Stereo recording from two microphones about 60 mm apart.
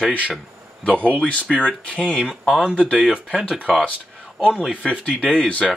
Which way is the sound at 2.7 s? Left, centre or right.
Centre.